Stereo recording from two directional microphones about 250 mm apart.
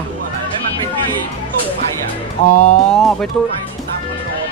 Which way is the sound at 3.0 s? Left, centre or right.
Centre.